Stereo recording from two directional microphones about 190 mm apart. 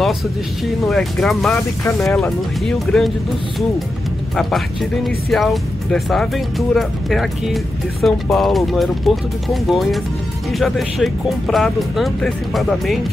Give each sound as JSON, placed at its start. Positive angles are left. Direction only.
{"t": 0.8, "sound": "speech", "side_deg": 0}
{"t": 4.4, "sound": "speech", "side_deg": 0}